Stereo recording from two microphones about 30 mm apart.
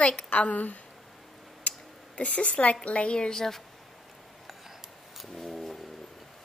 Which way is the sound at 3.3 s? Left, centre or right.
Centre.